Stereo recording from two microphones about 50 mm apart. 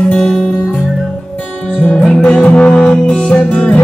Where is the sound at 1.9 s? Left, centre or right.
Centre.